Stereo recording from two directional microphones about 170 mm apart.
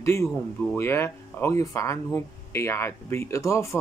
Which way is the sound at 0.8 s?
15° left (ahead or behind).